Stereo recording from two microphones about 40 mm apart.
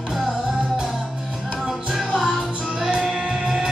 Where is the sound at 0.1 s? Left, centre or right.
Centre.